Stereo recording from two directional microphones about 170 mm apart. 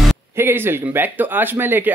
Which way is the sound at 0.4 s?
15° right (ahead or behind).